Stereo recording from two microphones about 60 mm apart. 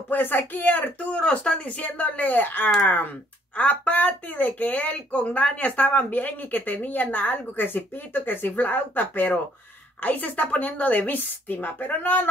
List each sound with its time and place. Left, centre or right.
0.1 s speech: left
1.2 s speech: centre